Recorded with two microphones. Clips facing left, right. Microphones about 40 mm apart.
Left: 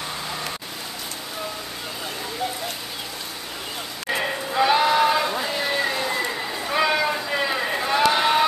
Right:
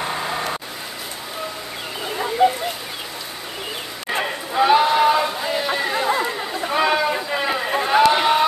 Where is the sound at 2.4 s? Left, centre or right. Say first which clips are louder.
Right 13 dB; right.